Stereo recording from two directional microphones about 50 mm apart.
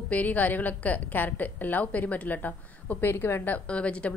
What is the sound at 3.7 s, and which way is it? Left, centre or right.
Speech, left.